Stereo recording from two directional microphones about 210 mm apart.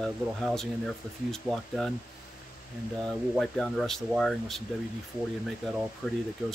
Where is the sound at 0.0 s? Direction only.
Centre (ahead or behind).